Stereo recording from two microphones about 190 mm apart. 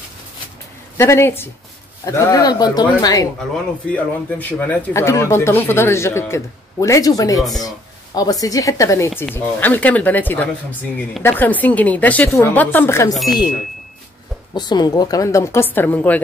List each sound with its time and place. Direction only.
0.9 s speech: 15° left (ahead or behind)
3.9 s speech: 10° left (ahead or behind)
14.5 s speech: 20° left (ahead or behind)